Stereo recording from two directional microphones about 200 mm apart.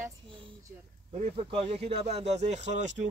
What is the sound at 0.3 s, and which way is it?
Speech, 25° right (ahead or behind).